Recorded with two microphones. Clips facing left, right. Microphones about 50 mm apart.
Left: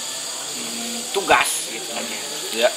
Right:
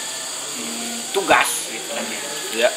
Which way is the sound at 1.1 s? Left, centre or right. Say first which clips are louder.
Right 2 dB; centre.